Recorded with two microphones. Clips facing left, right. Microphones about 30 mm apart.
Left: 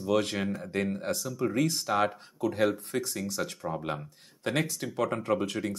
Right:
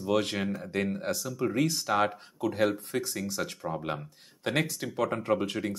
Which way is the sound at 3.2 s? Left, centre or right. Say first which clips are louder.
Even; centre.